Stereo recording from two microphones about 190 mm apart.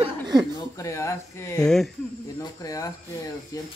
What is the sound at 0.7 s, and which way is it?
Speech, 15° left (ahead or behind).